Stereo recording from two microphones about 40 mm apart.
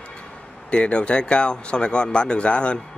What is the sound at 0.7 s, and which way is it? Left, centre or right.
Speech, left.